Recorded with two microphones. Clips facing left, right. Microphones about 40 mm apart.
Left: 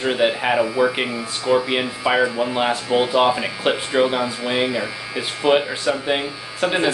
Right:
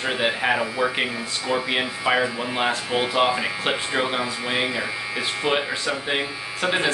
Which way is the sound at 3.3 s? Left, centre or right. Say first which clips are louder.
Left 3 dB; centre.